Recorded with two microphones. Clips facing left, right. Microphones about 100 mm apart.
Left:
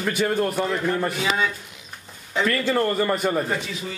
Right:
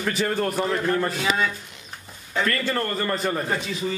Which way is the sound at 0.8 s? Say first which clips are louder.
Even; 10° left (ahead or behind).